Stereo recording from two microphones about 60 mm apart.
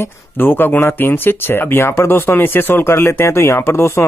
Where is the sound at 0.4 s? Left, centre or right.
Left.